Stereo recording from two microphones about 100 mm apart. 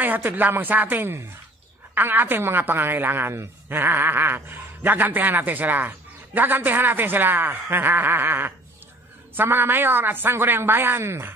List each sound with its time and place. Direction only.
0.0 s a woman's voice: 20° right (ahead or behind)